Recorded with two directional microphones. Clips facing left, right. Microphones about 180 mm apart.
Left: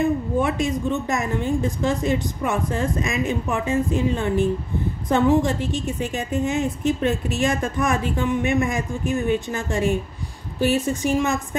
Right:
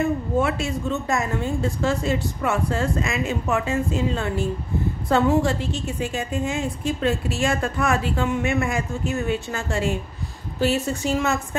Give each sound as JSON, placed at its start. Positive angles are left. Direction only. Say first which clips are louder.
{"t": 0.0, "sound": "a woman's voice", "louder": "left 1 dB", "side_deg": 15}
{"t": 10.9, "sound": "a woman's voice", "louder": "left 2 dB", "side_deg": 15}